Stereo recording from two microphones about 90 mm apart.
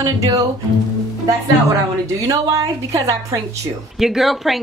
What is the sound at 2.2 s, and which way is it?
A woman's voice, 40° right (ahead or behind).